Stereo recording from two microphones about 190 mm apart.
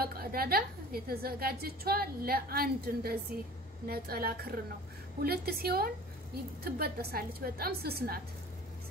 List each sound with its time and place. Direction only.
0.0 s a woman's voice: 50° right (ahead or behind)